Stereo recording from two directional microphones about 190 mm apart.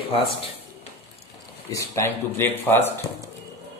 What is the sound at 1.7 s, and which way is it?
Speech, 15° left (ahead or behind).